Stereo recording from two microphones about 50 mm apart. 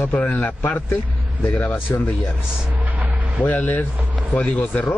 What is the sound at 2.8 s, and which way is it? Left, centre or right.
Vehicle, right.